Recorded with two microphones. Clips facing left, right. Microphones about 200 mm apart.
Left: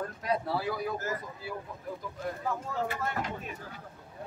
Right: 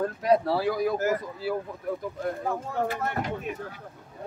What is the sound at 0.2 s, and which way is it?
Speech, 90° right.